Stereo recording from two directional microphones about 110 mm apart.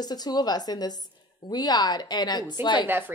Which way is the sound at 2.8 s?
20° right (ahead or behind).